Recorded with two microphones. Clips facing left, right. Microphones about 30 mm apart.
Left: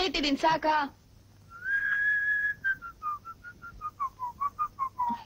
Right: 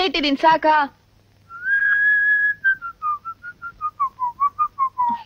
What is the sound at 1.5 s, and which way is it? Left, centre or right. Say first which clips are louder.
Whistling: right 10 dB; right.